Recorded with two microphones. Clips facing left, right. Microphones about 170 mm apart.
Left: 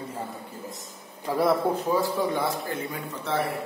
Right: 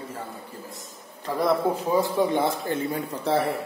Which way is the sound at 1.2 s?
10° left (ahead or behind).